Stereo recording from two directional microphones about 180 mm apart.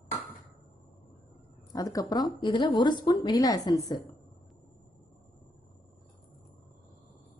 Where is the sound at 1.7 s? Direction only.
20° left (ahead or behind).